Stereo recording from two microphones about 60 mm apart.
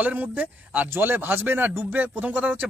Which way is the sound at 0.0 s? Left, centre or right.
Right.